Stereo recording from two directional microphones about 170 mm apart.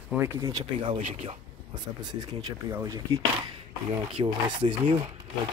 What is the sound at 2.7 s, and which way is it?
Speech, 20° right (ahead or behind).